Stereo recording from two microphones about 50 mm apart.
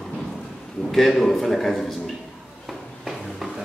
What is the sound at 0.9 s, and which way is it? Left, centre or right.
A man's voice, centre.